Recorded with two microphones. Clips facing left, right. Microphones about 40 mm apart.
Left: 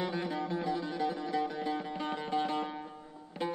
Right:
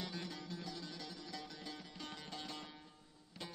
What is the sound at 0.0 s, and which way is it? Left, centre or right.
Music, left.